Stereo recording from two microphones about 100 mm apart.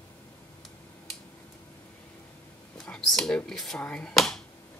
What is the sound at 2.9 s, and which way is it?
Speech, 5° left (ahead or behind).